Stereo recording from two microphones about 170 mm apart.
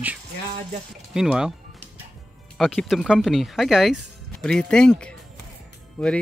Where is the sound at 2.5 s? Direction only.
5° left (ahead or behind).